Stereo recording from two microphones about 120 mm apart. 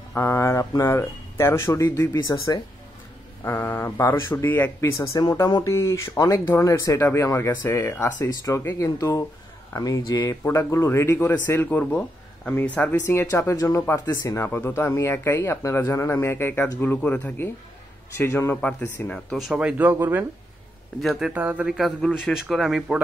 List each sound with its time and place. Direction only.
0.1 s speech: 20° left (ahead or behind)
14.0 s speech: 35° left (ahead or behind)
14.4 s speech: 20° left (ahead or behind)
19.3 s speech: 5° right (ahead or behind)
21.0 s a man's voice: centre (ahead or behind)
21.3 s a man's voice: 15° right (ahead or behind)